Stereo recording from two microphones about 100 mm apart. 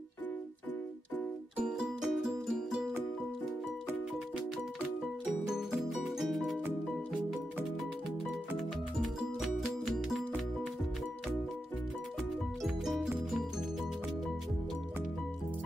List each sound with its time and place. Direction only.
1.6 s music: 5° right (ahead or behind)
5.8 s music: centre (ahead or behind)
8.5 s music: centre (ahead or behind)
12.6 s music: centre (ahead or behind)